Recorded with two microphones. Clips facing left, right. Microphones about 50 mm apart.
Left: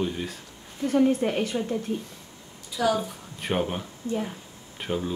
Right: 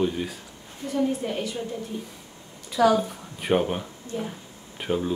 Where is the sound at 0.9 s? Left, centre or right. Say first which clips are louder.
Left 4 dB; left.